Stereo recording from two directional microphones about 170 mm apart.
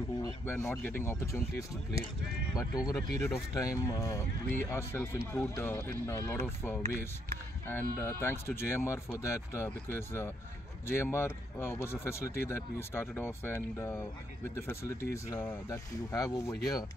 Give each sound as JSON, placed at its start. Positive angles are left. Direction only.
{"t": 0.2, "sound": "a man's voice", "side_deg": 15}
{"t": 2.5, "sound": "a man's voice", "side_deg": 20}
{"t": 7.6, "sound": "a man's voice", "side_deg": 10}